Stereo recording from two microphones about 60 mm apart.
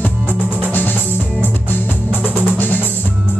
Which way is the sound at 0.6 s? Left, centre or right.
Left.